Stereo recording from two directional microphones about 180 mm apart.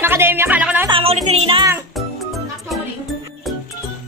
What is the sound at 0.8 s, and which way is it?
Music, 30° right (ahead or behind).